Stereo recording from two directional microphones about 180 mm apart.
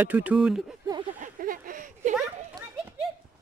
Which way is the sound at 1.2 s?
50° right (ahead or behind).